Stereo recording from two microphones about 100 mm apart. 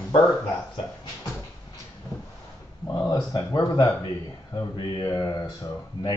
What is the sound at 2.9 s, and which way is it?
Speech, 40° left (ahead or behind).